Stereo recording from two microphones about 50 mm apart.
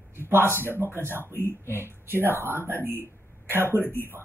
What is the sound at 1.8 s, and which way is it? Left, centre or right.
Speech, right.